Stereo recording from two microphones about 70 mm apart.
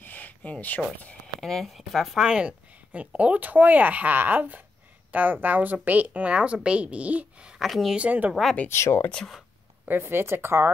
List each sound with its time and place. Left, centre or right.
0.0 s a sound: left
1.4 s speech: centre
2.2 s speech: centre
7.5 s a woman's voice: centre
7.9 s speech: right
8.6 s speech: left
9.8 s speech: right